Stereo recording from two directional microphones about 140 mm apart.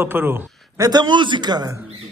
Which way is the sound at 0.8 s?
30° right (ahead or behind).